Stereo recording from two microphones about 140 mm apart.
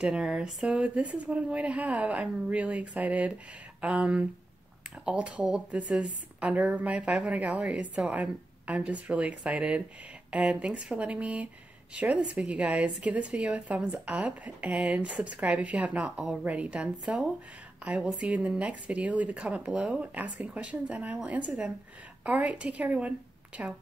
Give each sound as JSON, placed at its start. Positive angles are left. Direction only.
{"t": 0.0, "sound": "a woman's voice", "side_deg": -5}